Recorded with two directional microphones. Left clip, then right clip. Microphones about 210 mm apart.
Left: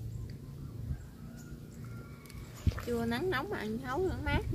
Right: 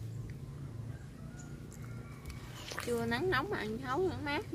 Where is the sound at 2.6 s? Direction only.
45° right (ahead or behind).